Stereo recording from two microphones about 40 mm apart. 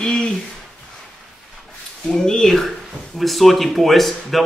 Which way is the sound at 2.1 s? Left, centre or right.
Centre.